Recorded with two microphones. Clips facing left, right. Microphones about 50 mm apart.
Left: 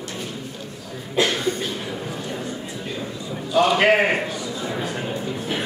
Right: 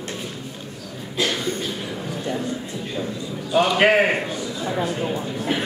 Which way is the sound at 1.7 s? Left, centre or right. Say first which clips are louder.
Even; centre.